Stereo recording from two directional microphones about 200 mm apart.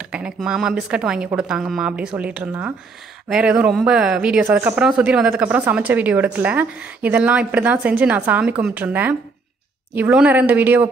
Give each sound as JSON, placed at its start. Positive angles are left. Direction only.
{"t": 0.0, "sound": "a woman's voice", "side_deg": -5}